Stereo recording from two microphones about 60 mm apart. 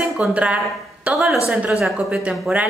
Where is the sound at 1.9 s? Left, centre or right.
Centre.